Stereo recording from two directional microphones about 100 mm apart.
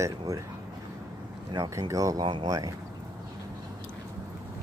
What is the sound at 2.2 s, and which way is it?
Speech, 55° right (ahead or behind).